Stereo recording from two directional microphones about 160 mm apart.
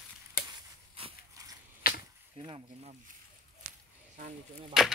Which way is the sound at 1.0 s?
35° right (ahead or behind).